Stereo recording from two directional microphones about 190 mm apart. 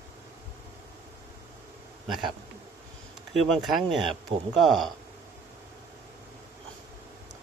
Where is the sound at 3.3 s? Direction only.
Centre (ahead or behind).